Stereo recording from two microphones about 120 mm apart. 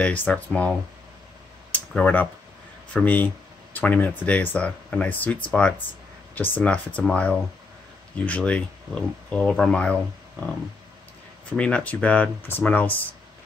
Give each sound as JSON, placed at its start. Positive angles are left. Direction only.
{"t": 0.0, "sound": "speech", "side_deg": 10}
{"t": 1.7, "sound": "a sound", "side_deg": 10}
{"t": 2.9, "sound": "speech", "side_deg": 10}
{"t": 11.5, "sound": "speech", "side_deg": 10}